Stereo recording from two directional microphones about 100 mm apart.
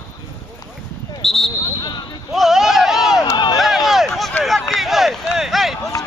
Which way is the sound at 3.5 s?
Centre (ahead or behind).